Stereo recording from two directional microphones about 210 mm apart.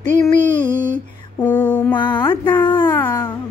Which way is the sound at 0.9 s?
10° left (ahead or behind).